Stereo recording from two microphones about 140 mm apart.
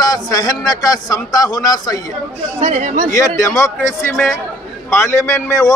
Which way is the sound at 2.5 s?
55° right (ahead or behind).